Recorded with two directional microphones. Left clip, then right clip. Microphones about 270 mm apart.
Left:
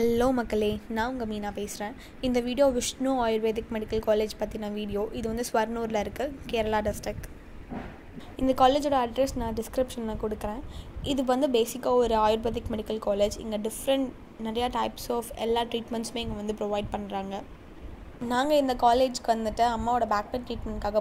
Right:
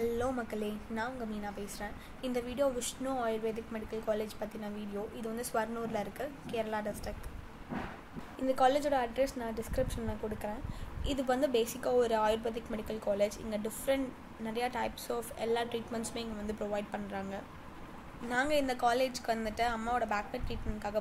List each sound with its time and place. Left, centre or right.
0.0 s a woman's voice: left
8.4 s a woman's voice: left